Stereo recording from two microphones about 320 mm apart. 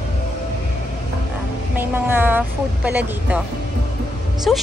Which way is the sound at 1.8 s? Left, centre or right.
Centre.